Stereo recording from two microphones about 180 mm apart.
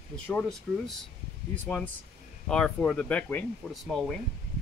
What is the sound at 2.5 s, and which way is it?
Speech, 5° left (ahead or behind).